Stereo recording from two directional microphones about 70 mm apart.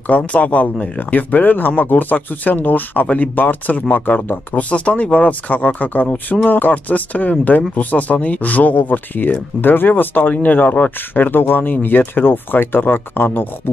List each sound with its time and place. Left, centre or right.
0.0 s speech: left